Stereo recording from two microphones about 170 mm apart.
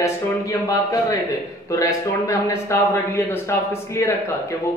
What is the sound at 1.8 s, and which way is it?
Speech, 20° left (ahead or behind).